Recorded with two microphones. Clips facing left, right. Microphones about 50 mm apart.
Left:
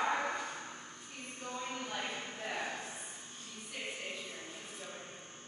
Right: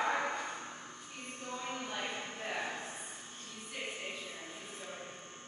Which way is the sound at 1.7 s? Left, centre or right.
Centre.